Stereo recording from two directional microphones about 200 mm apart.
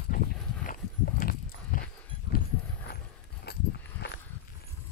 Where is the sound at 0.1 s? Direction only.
40° left (ahead or behind).